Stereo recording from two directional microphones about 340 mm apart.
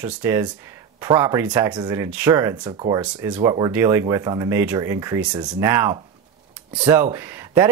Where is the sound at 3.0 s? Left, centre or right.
Centre.